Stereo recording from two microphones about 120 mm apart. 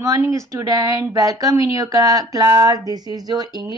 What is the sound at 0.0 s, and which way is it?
Speech, 25° right (ahead or behind).